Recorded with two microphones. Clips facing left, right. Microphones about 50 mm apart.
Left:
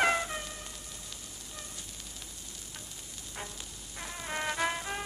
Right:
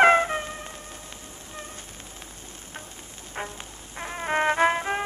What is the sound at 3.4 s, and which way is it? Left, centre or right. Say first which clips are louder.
Music: right 9 dB; right.